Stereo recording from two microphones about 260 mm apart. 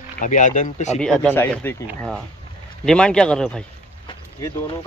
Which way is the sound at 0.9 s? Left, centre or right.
Centre.